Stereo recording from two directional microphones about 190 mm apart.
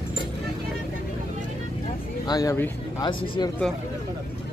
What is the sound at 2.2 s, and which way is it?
Speech, 20° left (ahead or behind).